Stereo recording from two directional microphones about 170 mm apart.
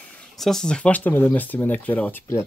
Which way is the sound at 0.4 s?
Centre (ahead or behind).